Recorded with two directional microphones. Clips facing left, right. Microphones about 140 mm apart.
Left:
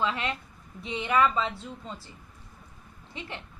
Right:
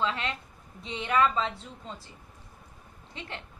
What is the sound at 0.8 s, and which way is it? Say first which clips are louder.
Speech: left 1 dB; 10° left (ahead or behind).